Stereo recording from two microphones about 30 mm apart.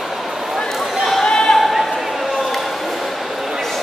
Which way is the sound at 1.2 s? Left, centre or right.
Left.